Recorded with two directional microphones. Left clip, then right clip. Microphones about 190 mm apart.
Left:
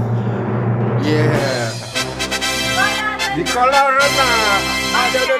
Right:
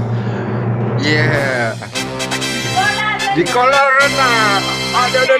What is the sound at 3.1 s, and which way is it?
Music, 5° left (ahead or behind).